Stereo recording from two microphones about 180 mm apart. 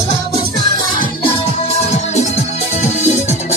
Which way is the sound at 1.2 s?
35° left (ahead or behind).